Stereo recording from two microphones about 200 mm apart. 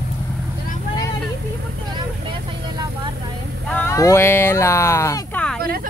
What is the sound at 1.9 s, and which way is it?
Vehicle, 25° right (ahead or behind).